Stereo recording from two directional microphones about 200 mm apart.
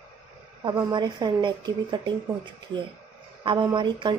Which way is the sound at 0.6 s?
20° right (ahead or behind).